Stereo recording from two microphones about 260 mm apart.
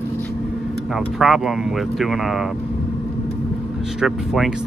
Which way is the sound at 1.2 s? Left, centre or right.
Centre.